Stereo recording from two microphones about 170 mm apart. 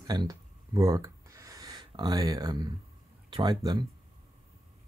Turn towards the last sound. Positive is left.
turn(degrees=-25)  # may be behind; listen again after turning